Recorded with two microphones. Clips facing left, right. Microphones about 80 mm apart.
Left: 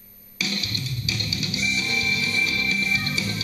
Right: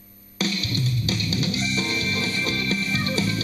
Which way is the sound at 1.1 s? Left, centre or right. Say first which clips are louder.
Right 3 dB; right.